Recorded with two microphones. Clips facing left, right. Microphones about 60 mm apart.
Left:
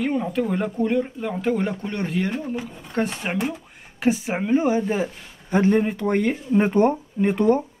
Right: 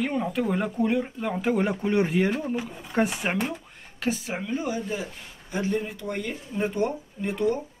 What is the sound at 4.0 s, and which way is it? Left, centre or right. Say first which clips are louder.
A woman's voice: left 7 dB; left.